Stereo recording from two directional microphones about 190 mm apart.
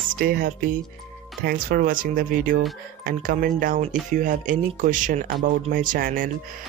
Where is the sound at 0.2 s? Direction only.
50° right (ahead or behind).